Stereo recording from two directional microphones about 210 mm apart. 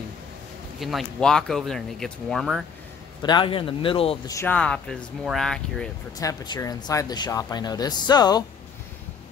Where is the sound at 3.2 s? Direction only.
20° left (ahead or behind).